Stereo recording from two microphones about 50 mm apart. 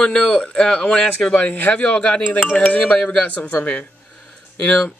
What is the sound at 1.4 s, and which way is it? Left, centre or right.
Speech, left.